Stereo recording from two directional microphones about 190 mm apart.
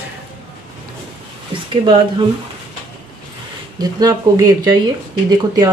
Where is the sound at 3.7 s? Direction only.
20° right (ahead or behind).